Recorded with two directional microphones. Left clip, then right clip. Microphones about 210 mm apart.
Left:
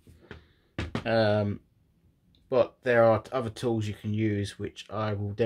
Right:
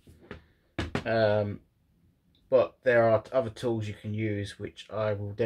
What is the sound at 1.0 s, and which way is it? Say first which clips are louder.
Speech: even; 50° left (ahead or behind).